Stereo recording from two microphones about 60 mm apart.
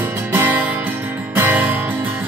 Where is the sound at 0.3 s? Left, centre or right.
Right.